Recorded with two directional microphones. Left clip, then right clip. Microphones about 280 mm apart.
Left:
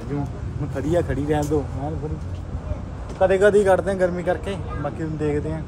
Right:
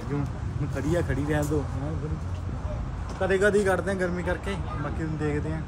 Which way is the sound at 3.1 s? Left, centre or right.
Centre.